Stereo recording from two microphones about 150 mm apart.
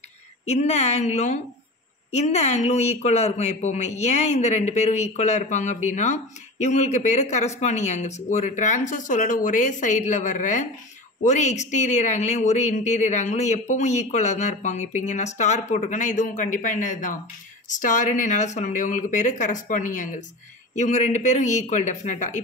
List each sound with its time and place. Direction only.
0.5 s speech: 45° left (ahead or behind)